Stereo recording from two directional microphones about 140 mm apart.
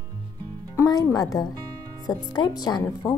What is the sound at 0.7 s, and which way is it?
Speech, 25° left (ahead or behind).